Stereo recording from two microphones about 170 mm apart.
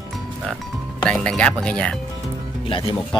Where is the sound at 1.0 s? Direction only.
5° left (ahead or behind).